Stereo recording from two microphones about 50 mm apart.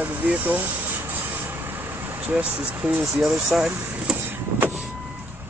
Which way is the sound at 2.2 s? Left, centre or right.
Right.